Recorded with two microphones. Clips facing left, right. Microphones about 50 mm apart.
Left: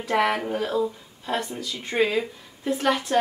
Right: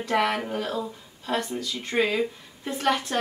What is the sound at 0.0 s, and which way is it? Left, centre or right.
Speech, centre.